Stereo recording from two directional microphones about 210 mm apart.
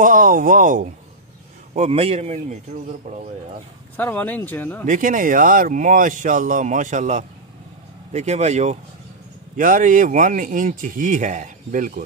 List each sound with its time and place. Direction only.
0.0 s speech: 40° right (ahead or behind)
1.7 s speech: 30° right (ahead or behind)
3.9 s speech: 10° left (ahead or behind)
4.8 s speech: 40° right (ahead or behind)